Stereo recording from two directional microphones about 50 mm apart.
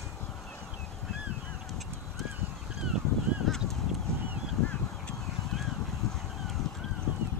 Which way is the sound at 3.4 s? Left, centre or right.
Centre.